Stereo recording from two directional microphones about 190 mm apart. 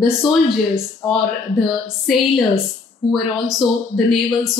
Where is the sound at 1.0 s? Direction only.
20° left (ahead or behind).